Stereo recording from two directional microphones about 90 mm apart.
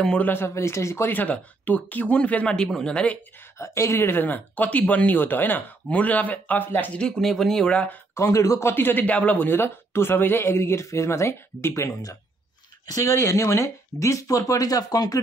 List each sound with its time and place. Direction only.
0.0 s speech: 10° left (ahead or behind)
0.3 s speech: 30° left (ahead or behind)
1.1 s speech: 20° left (ahead or behind)
3.5 s speech: 35° left (ahead or behind)
7.0 s speech: 5° left (ahead or behind)
8.1 s speech: 30° left (ahead or behind)